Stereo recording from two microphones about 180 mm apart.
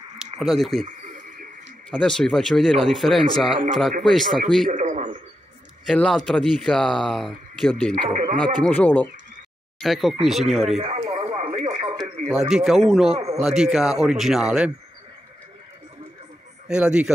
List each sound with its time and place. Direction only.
0.2 s speech: centre (ahead or behind)
0.8 s a sound: 45° right (ahead or behind)
1.9 s speech: 5° left (ahead or behind)
4.6 s a man's voice: 45° right (ahead or behind)
5.9 s speech: 5° left (ahead or behind)
7.9 s a man's voice: 45° right (ahead or behind)
8.6 s speech: 10° left (ahead or behind)
10.8 s radio: 35° right (ahead or behind)
12.3 s speech: centre (ahead or behind)
13.1 s a man's voice: 35° right (ahead or behind)
13.4 s speech: centre (ahead or behind)
16.6 s speech: 5° right (ahead or behind)